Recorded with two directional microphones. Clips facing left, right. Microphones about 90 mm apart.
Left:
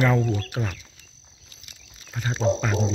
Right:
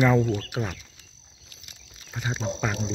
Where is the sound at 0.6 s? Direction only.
5° right (ahead or behind).